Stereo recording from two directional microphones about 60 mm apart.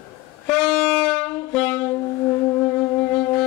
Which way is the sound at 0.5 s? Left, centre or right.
Centre.